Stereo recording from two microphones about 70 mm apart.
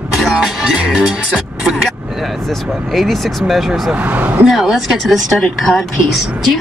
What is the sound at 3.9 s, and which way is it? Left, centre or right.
Speech, right.